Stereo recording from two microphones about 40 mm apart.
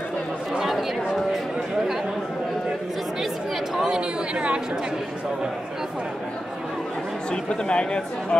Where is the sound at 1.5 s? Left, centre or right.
Centre.